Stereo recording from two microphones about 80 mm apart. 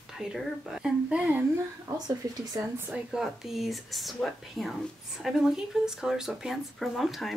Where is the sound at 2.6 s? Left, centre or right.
Right.